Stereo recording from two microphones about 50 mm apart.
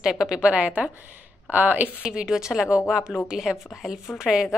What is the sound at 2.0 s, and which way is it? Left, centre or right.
A woman's voice, centre.